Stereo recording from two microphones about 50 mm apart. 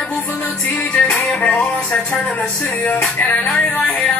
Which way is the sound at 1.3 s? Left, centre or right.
Left.